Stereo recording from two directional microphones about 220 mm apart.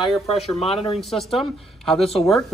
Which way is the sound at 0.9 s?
Centre (ahead or behind).